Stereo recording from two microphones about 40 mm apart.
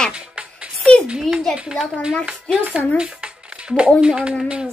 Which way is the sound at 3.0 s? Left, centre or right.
Right.